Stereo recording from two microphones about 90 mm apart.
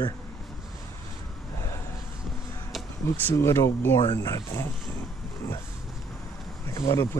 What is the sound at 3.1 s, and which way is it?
Speech, 25° left (ahead or behind).